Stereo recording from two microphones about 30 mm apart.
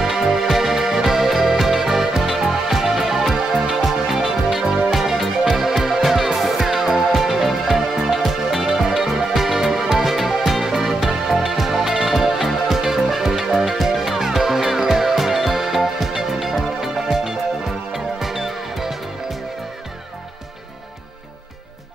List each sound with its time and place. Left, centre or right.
0.0 s music: centre